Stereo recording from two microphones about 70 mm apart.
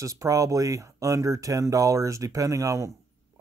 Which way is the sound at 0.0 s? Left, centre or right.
Right.